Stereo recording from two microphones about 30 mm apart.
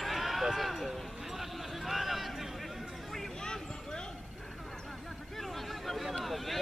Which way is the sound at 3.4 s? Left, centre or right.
Left.